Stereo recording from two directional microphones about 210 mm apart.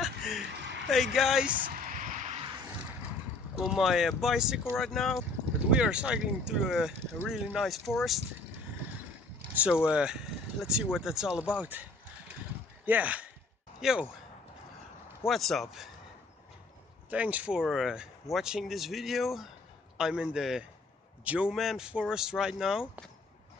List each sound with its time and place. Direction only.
0.8 s speech: centre (ahead or behind)
1.7 s a sound: 40° right (ahead or behind)
3.5 s speech: centre (ahead or behind)
9.5 s speech: 5° right (ahead or behind)
12.8 s speech: 5° right (ahead or behind)
15.2 s speech: centre (ahead or behind)
17.1 s speech: 5° right (ahead or behind)